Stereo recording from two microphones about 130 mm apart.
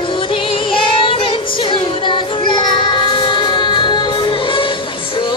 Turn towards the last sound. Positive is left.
turn(degrees=40)  # may be behind; listen again after turning